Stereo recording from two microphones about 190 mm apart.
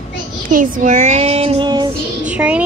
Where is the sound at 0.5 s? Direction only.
45° right (ahead or behind); by 1.9 s 25° right (ahead or behind).